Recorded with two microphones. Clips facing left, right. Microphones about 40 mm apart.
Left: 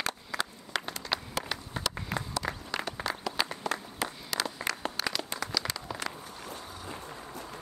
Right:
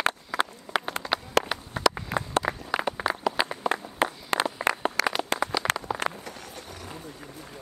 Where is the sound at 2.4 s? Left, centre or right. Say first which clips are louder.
Right 6 dB; centre.